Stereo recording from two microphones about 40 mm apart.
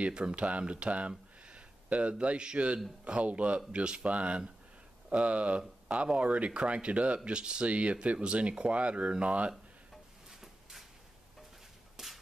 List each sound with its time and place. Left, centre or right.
0.1 s speech: right
10.4 s drawer open or close: centre
12.0 s whip: centre